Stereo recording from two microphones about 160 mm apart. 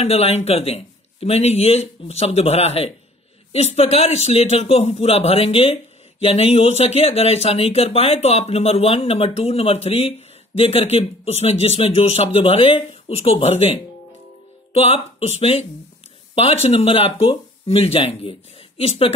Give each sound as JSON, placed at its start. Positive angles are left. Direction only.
{"t": 0.0, "sound": "speech", "side_deg": 40}